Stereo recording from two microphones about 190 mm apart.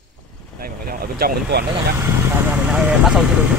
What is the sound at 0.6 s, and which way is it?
Vehicle, 50° right (ahead or behind).